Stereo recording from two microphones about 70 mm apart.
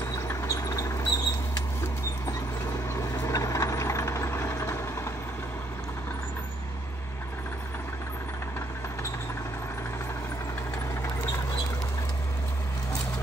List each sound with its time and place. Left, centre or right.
0.1 s mouse: left
2.9 s vehicle: left